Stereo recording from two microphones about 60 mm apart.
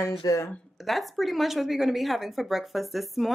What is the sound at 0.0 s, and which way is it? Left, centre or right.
Speech, left.